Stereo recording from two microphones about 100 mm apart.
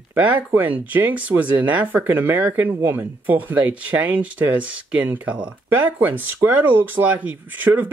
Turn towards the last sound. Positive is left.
turn(degrees=-20)  # may be behind; listen again after turning